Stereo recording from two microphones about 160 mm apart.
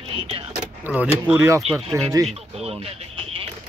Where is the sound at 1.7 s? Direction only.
Centre (ahead or behind).